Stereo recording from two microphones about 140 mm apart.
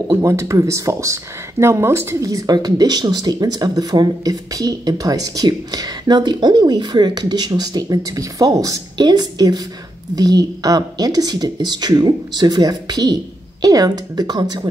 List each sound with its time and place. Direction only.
0.1 s speech: 25° right (ahead or behind)